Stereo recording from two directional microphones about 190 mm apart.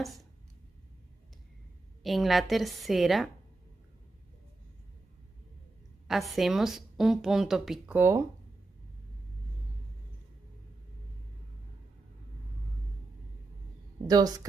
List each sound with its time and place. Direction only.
2.0 s a woman's voice: centre (ahead or behind)
6.0 s a woman's voice: centre (ahead or behind)
14.0 s a woman's voice: 20° right (ahead or behind)